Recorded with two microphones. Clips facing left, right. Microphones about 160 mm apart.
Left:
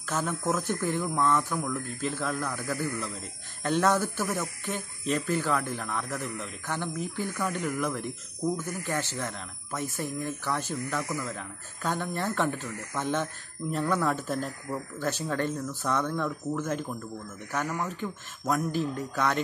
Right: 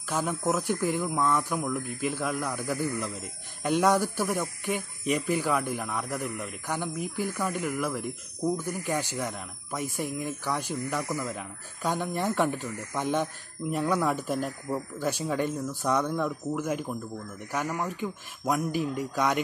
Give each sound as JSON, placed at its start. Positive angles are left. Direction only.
{"t": 0.0, "sound": "speech", "side_deg": -10}